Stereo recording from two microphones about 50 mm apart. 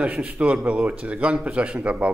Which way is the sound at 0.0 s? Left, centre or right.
Right.